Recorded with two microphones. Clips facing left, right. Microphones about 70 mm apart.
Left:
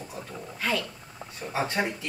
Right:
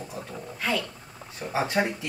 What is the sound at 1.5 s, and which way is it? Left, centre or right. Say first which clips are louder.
Speech: right 3 dB; centre.